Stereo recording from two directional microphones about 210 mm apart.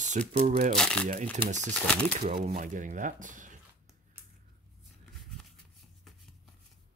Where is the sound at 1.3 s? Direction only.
35° right (ahead or behind).